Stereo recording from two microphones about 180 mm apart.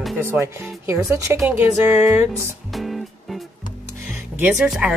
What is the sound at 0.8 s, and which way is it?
Speech, 15° right (ahead or behind).